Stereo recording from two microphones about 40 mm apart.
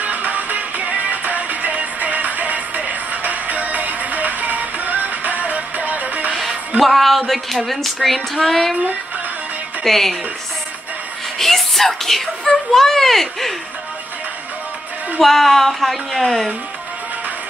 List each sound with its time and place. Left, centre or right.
0.0 s music: right
6.8 s female singing: centre
9.8 s female singing: centre
11.3 s speech: centre
15.1 s female singing: centre